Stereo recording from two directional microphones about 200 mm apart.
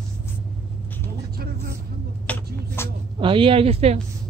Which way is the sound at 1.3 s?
50° right (ahead or behind).